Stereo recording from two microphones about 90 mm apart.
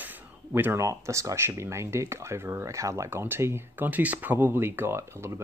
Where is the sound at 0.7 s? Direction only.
35° right (ahead or behind).